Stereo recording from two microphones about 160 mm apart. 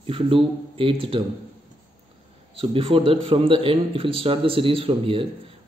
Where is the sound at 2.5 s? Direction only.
35° right (ahead or behind).